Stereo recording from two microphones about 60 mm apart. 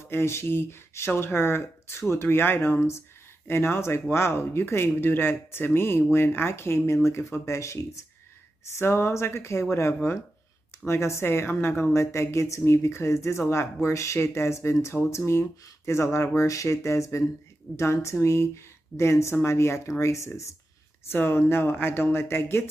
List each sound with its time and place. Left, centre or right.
0.1 s speech: left
8.7 s speech: left
21.1 s speech: left